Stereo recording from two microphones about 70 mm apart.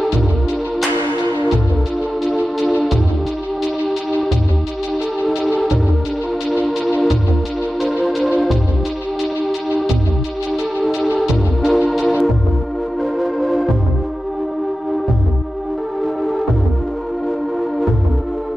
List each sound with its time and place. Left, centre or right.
2.2 s music: centre
7.8 s music: centre
10.8 s music: centre